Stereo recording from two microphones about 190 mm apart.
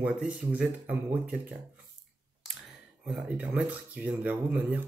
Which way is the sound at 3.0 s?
5° right (ahead or behind).